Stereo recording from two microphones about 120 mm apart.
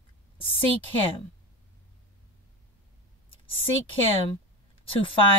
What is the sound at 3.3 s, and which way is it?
Speech, 50° left (ahead or behind).